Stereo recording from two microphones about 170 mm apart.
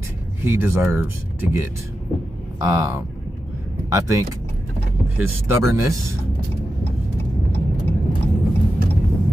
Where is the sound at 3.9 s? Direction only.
15° right (ahead or behind).